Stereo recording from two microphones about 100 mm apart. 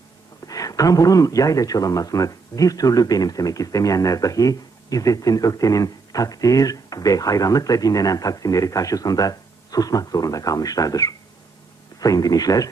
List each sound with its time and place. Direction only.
0.5 s speech: 35° left (ahead or behind)